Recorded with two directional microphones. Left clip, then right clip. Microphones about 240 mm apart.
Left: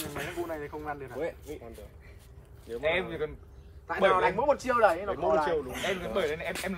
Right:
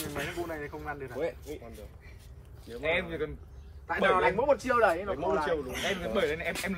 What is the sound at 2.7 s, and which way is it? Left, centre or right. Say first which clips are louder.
Speech: left 1 dB; left.